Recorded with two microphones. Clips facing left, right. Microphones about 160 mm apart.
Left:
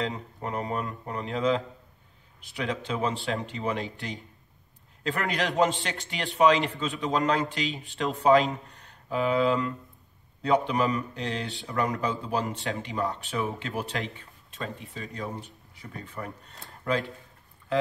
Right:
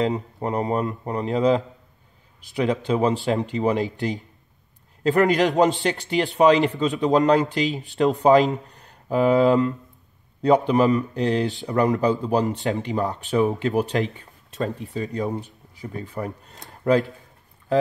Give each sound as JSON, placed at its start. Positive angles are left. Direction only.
{"t": 0.0, "sound": "speech", "side_deg": -35}